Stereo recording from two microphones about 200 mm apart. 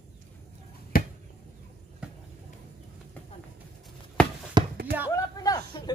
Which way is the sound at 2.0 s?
5° right (ahead or behind).